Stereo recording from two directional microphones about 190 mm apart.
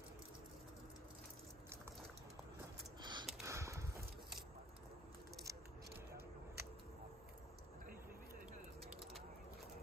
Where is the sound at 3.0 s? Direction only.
20° right (ahead or behind).